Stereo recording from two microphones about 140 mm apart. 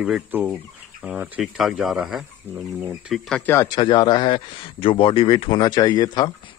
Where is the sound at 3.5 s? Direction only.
30° left (ahead or behind).